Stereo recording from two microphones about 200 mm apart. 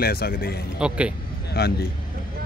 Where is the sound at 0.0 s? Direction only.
50° left (ahead or behind).